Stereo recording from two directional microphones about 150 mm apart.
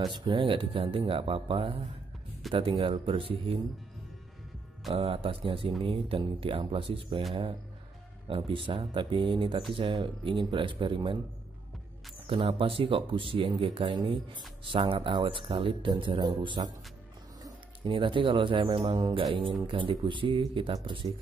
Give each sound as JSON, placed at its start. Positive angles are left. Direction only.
{"t": 0.0, "sound": "speech", "side_deg": -30}
{"t": 4.9, "sound": "speech", "side_deg": -40}
{"t": 8.3, "sound": "speech", "side_deg": -35}
{"t": 12.3, "sound": "speech", "side_deg": -40}